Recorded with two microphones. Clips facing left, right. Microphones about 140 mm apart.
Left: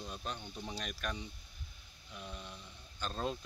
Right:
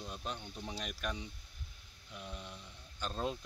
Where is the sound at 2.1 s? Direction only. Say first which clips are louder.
Even; 10° right (ahead or behind).